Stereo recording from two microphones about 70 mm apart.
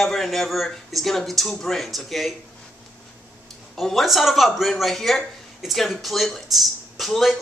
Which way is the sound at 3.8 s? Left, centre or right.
Centre.